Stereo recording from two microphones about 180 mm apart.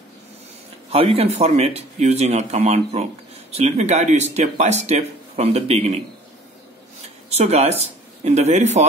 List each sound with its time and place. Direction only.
0.8 s speech: 35° right (ahead or behind)
7.3 s speech: 35° right (ahead or behind)